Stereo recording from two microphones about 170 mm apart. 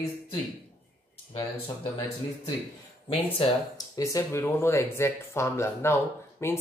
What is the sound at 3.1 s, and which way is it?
Speech, 25° left (ahead or behind).